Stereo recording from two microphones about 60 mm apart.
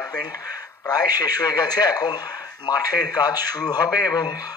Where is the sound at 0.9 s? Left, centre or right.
Left.